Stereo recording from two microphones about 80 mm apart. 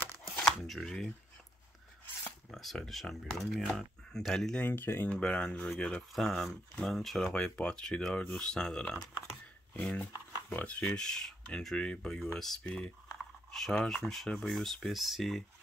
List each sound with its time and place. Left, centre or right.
0.4 s shuffling cards: centre
2.5 s speech: centre
4.6 s speech: left
5.1 s speech: centre